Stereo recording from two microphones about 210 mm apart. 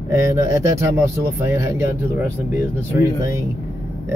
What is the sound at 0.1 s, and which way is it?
Speech, 15° right (ahead or behind).